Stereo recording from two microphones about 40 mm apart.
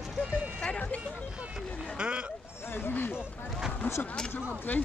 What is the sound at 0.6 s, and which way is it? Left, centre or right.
Vehicle, left.